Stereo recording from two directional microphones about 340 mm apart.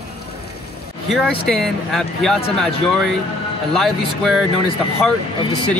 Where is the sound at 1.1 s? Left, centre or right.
Centre.